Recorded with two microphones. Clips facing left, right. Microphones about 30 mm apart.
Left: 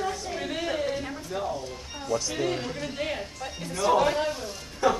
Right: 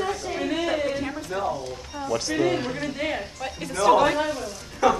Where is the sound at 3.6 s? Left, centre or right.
Right.